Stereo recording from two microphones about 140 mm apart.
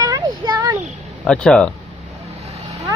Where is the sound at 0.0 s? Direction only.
25° right (ahead or behind).